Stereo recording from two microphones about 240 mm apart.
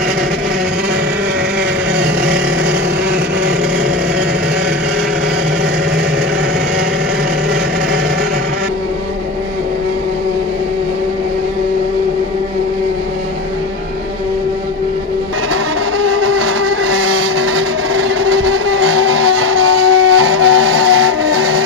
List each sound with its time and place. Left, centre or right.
15.5 s vehicle: right